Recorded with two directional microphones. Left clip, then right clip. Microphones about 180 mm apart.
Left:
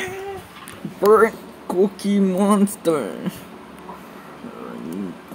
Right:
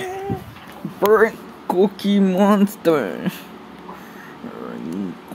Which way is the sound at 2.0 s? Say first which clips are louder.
Right 3 dB; 5° right (ahead or behind).